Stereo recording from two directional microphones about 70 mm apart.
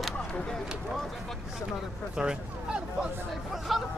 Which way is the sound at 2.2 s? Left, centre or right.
Centre.